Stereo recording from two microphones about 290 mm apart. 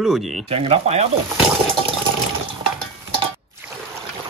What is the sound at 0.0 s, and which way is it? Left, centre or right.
Speech, centre.